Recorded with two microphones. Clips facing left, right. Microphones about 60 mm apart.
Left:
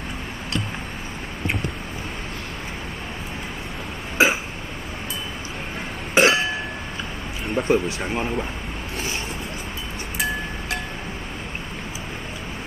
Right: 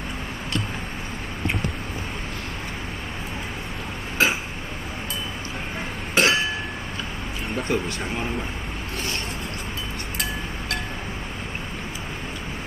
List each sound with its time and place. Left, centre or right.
4.2 s a sound: centre
6.1 s chink: centre
7.5 s speech: centre